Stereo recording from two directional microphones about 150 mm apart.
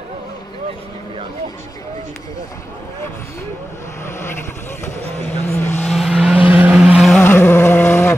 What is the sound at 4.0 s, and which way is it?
Vehicle, 15° left (ahead or behind).